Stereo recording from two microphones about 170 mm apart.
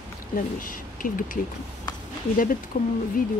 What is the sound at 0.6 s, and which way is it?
Speech, 55° left (ahead or behind).